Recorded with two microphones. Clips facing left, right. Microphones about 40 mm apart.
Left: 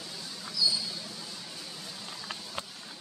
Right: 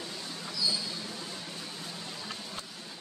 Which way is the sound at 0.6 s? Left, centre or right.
Right.